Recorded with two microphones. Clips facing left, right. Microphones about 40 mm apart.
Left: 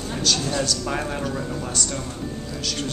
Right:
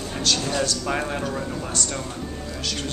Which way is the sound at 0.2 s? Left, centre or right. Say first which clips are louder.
Even; centre.